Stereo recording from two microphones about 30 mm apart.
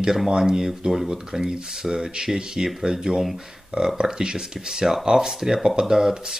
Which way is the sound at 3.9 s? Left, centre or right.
Right.